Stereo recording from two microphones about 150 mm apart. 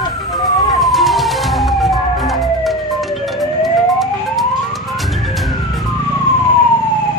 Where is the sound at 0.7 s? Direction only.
Centre (ahead or behind).